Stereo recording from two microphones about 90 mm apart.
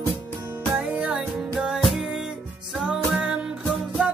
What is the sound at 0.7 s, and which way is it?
Music, 15° right (ahead or behind).